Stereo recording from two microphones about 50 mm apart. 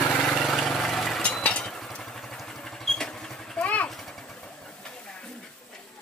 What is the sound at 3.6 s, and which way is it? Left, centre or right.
Vehicle, left.